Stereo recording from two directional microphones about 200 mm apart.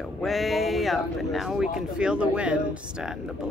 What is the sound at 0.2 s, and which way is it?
Speech, centre (ahead or behind).